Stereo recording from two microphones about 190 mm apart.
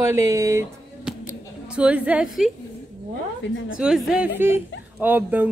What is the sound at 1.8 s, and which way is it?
Speech, 5° right (ahead or behind).